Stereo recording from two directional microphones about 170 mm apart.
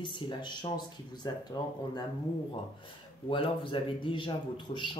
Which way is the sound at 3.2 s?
30° left (ahead or behind).